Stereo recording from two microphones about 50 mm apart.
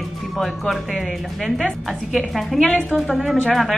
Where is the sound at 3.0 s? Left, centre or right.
Centre.